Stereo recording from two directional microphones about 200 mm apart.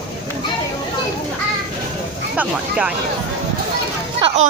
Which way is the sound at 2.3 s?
5° right (ahead or behind).